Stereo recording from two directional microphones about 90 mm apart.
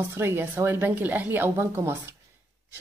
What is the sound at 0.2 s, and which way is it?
A woman's voice, 25° right (ahead or behind).